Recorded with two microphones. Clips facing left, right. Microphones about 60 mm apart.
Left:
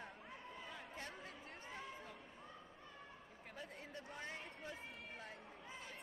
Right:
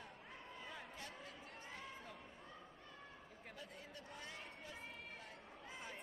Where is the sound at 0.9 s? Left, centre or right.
Left.